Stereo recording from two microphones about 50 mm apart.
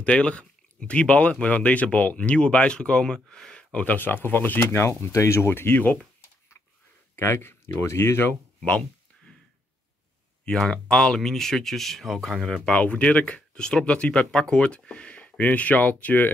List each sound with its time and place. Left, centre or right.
0.0 s speech: left
3.7 s speech: left
4.7 s speech: left
7.2 s speech: left
10.4 s speech: centre
12.6 s speech: left
13.6 s speech: centre; by 16.3 s left